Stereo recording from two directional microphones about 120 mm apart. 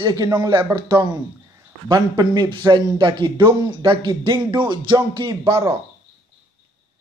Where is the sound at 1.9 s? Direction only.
35° right (ahead or behind).